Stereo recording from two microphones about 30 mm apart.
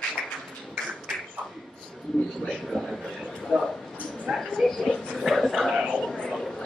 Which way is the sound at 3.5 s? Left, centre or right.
Centre.